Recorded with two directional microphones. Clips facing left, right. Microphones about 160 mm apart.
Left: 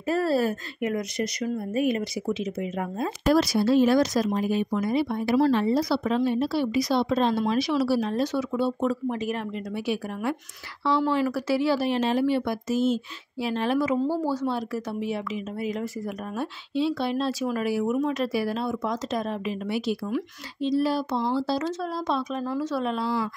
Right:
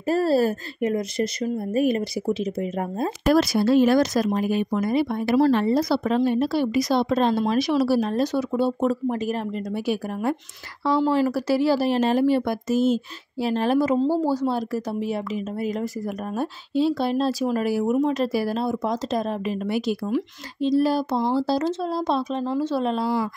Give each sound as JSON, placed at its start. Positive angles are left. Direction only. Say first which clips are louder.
{"t": 0.0, "sound": "speech", "louder": "right 4 dB", "side_deg": -35}
{"t": 3.3, "sound": "speech", "louder": "right 2 dB", "side_deg": -55}
{"t": 11.1, "sound": "speech", "louder": "right 3 dB", "side_deg": -35}
{"t": 16.3, "sound": "speech", "louder": "right 4 dB", "side_deg": -40}